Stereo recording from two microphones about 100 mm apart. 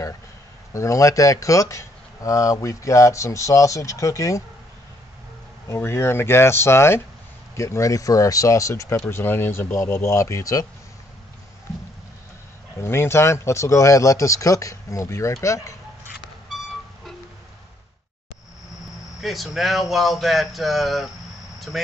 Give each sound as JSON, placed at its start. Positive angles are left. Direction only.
{"t": 0.7, "sound": "speech", "side_deg": 30}
{"t": 5.7, "sound": "speech", "side_deg": 25}
{"t": 9.1, "sound": "speech", "side_deg": 20}
{"t": 12.8, "sound": "speech", "side_deg": 25}
{"t": 15.4, "sound": "a sound", "side_deg": 30}
{"t": 19.2, "sound": "speech", "side_deg": 0}
{"t": 21.5, "sound": "a sound", "side_deg": 0}